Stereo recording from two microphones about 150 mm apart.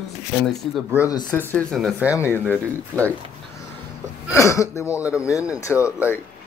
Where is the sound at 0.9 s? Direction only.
20° left (ahead or behind).